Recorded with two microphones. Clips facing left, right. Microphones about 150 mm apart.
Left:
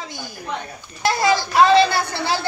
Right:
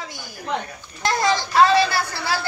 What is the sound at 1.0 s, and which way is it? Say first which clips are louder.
Speech: left 2 dB; 10° left (ahead or behind).